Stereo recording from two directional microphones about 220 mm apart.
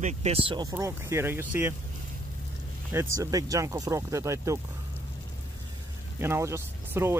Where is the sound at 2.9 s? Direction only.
15° right (ahead or behind).